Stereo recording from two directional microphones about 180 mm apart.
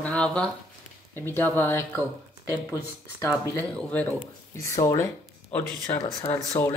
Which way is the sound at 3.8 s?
10° left (ahead or behind).